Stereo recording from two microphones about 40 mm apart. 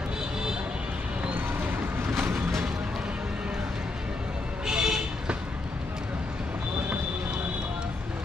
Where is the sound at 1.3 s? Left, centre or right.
Right.